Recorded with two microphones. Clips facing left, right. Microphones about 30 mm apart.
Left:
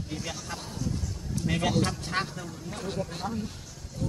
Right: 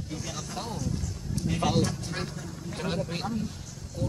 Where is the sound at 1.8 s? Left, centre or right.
Left.